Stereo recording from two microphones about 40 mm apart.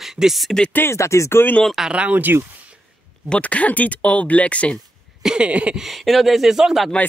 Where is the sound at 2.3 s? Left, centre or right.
Right.